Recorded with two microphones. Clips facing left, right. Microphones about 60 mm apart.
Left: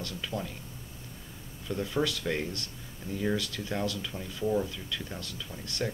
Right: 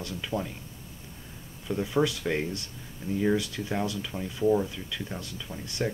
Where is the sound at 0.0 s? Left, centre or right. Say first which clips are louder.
Right 3 dB; centre.